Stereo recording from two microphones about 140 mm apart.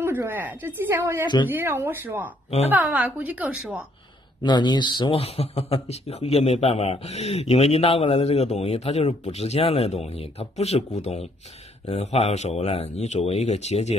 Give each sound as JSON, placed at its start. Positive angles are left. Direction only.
{"t": 0.0, "sound": "speech", "side_deg": -15}
{"t": 4.4, "sound": "speech", "side_deg": 30}
{"t": 5.1, "sound": "speech", "side_deg": 45}